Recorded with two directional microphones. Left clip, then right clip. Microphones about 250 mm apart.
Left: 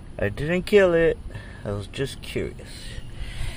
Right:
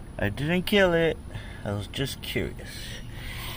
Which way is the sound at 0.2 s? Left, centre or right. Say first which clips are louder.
Left 3 dB; centre.